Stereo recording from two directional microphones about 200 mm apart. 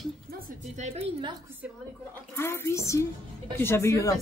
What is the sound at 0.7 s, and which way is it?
Speech, 35° right (ahead or behind).